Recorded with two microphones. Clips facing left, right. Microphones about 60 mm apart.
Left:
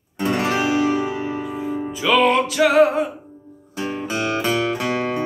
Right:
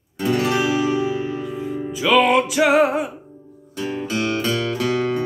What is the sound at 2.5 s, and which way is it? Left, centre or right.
Music, centre.